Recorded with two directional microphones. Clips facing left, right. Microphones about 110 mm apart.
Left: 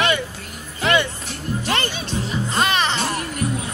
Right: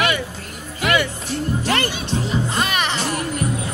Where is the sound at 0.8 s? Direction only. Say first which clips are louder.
Even; 30° left (ahead or behind).